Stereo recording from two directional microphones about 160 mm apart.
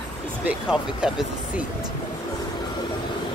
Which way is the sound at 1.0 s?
5° right (ahead or behind).